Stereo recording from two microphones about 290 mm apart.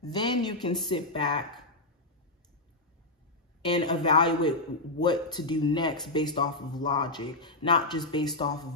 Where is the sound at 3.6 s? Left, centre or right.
Centre.